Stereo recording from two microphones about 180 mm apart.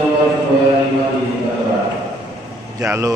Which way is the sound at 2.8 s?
15° right (ahead or behind).